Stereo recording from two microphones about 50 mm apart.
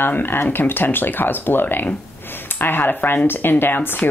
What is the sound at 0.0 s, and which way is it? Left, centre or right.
Speech, left.